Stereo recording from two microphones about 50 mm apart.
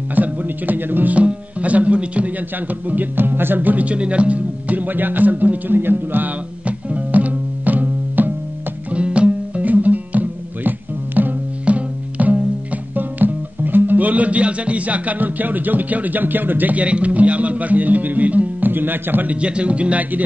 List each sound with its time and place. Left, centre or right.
0.1 s speech: right
1.1 s speech: right
2.9 s speech: right
6.6 s music: right
8.9 s music: right
12.9 s music: right
18.7 s speech: right
19.4 s speech: right